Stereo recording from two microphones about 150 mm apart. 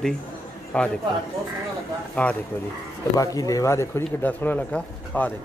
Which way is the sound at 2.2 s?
10° left (ahead or behind).